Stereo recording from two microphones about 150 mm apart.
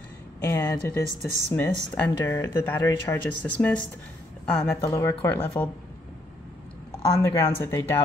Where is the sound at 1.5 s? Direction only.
15° left (ahead or behind).